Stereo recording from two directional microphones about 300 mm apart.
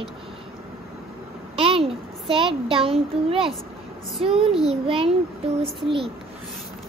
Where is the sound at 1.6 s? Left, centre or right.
Centre.